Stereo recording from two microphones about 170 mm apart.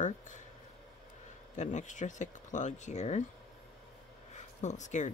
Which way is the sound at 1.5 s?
45° left (ahead or behind).